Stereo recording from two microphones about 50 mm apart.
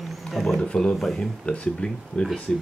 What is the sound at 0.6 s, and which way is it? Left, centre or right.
Speech, centre.